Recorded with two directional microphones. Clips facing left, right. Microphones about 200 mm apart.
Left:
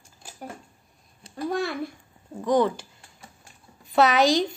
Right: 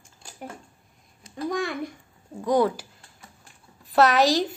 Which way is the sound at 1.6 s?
15° right (ahead or behind).